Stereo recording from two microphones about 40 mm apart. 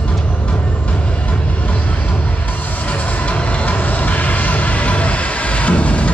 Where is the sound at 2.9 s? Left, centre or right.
Left.